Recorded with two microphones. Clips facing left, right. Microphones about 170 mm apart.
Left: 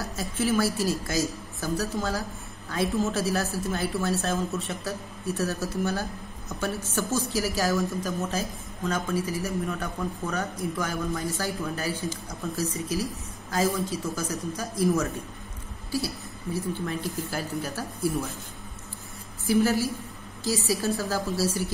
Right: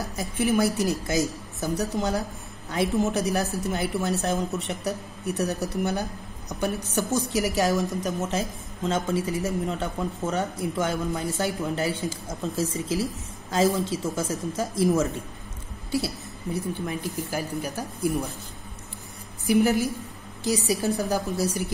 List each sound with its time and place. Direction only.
0.0 s a woman's voice: 20° right (ahead or behind)
16.7 s speech: 15° right (ahead or behind)
19.4 s a woman's voice: 20° right (ahead or behind)